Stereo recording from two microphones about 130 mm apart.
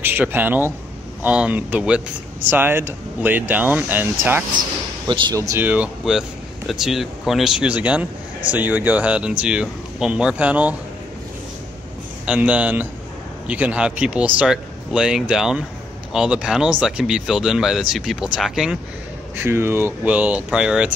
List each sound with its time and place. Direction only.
0.0 s speech: 15° right (ahead or behind)
4.6 s speech: 35° right (ahead or behind)
5.3 s speech: 25° right (ahead or behind)
5.6 s speech: 10° right (ahead or behind)
12.3 s speech: 10° right (ahead or behind)
19.3 s speech: 20° right (ahead or behind)